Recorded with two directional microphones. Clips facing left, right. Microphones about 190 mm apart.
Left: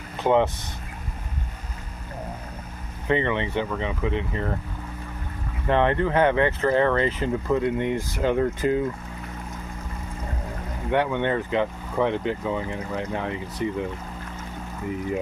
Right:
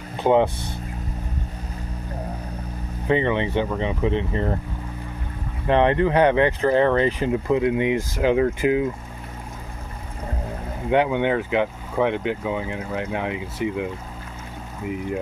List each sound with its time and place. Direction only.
0.2 s speech: 15° right (ahead or behind)
3.1 s speech: 15° right (ahead or behind)
5.7 s speech: 20° right (ahead or behind)
10.9 s speech: 15° right (ahead or behind)